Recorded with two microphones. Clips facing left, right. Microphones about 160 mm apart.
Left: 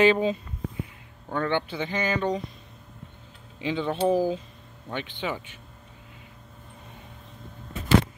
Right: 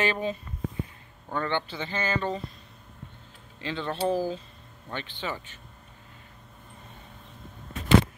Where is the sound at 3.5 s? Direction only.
10° left (ahead or behind).